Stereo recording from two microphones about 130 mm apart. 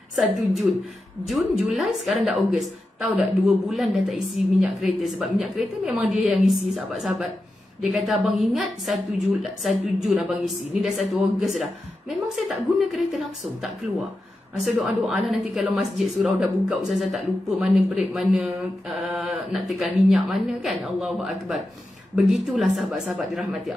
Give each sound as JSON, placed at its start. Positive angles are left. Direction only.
{"t": 0.1, "sound": "speech", "side_deg": 0}
{"t": 1.7, "sound": "speech", "side_deg": 0}